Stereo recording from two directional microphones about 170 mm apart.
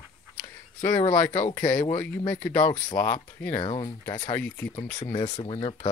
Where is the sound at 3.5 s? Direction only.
30° left (ahead or behind).